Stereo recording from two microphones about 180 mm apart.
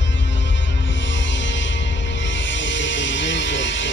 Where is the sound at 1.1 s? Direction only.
90° left.